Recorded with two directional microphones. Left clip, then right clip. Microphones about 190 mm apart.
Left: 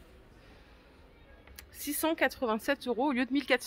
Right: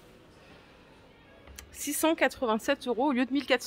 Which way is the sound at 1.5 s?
10° left (ahead or behind).